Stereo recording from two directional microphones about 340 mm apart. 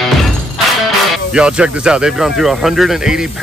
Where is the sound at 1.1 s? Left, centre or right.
Centre.